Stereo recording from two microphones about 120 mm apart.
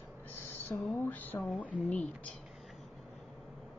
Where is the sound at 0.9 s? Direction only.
15° left (ahead or behind).